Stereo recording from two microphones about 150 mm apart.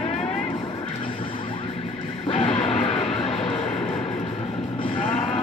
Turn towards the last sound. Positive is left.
turn(degrees=40)  # may be behind; listen again after turning